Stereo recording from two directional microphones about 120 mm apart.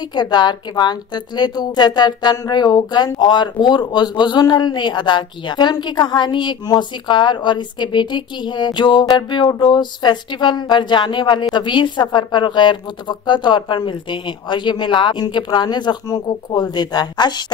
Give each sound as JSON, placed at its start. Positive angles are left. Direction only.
{"t": 0.1, "sound": "a woman's voice", "side_deg": 35}